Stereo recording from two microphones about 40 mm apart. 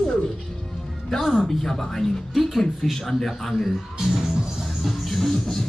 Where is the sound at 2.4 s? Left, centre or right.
Centre.